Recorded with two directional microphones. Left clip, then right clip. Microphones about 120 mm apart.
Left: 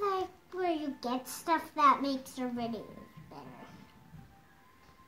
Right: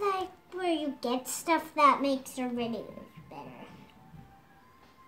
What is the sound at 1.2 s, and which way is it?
A child's voice, 30° right (ahead or behind).